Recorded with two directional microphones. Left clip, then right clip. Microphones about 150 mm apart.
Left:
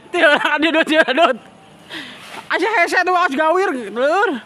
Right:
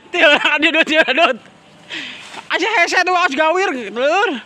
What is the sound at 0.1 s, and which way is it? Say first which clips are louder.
A man's voice: right 2 dB; 5° right (ahead or behind).